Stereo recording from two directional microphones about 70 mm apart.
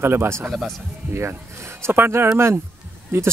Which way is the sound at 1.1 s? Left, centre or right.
Right.